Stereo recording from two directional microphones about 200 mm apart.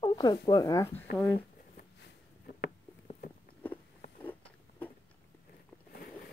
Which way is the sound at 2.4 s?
50° left (ahead or behind).